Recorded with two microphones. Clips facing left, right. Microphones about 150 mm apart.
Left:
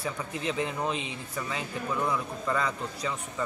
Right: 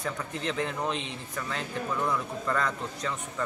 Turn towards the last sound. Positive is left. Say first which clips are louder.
# even
turn(degrees=5)  # may be behind; listen again after turning